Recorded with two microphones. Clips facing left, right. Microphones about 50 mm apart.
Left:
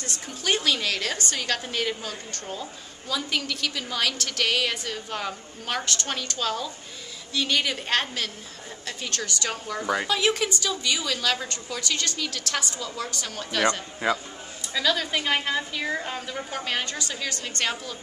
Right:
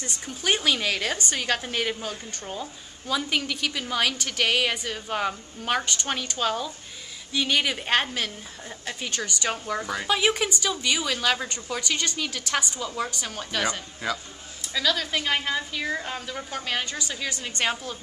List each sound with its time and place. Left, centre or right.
0.0 s a woman's voice: centre
14.0 s a man's voice: left
14.6 s a woman's voice: centre